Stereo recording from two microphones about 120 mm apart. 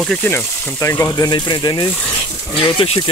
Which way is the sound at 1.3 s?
35° left (ahead or behind).